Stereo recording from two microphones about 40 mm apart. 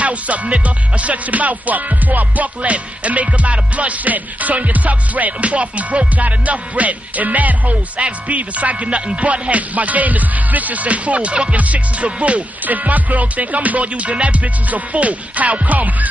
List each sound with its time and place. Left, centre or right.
0.0 s music: right